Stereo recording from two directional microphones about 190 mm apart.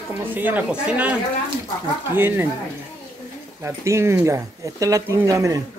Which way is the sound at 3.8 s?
15° right (ahead or behind).